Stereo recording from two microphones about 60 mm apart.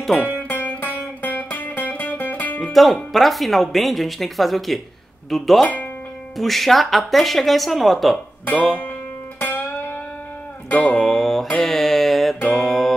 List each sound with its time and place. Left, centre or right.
0.5 s music: left
2.6 s speech: centre
8.5 s speech: left
9.4 s music: left
10.7 s music: left
11.0 s music: centre